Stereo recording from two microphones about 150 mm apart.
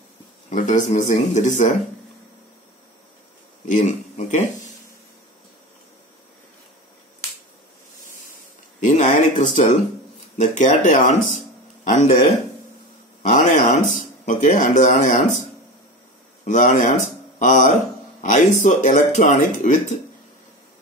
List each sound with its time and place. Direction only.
0.5 s speech: 55° left (ahead or behind)
3.6 s speech: 55° left (ahead or behind)
8.8 s a sound: 55° left (ahead or behind)
10.3 s speech: 55° left (ahead or behind)
11.3 s a sound: 55° left (ahead or behind)
13.3 s speech: 50° left (ahead or behind)
16.4 s speech: 55° left (ahead or behind)